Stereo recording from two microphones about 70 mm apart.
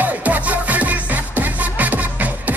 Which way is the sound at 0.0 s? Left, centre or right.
Right.